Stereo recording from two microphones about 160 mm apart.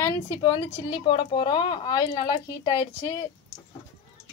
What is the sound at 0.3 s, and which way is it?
Speech, 30° left (ahead or behind).